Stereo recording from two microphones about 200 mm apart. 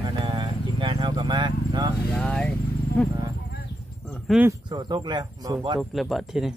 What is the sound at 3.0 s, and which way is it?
Horse, 5° left (ahead or behind).